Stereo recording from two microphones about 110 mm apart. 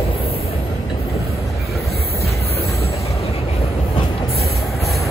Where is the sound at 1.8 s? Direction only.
65° left (ahead or behind).